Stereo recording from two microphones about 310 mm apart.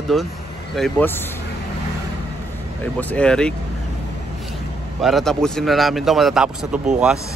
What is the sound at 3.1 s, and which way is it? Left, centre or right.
Speech, centre.